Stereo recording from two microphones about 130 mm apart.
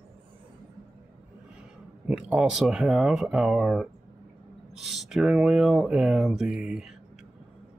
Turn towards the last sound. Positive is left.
turn(degrees=-5)  # may be behind; listen again after turning